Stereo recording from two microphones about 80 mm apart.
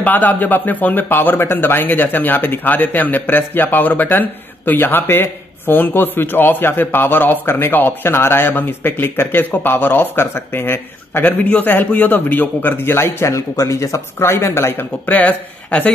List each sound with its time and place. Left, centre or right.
0.0 s a man's voice: left
14.1 s a man's voice: left